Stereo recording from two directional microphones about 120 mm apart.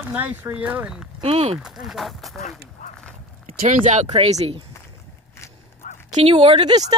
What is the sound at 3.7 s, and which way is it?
Speech, 90° right.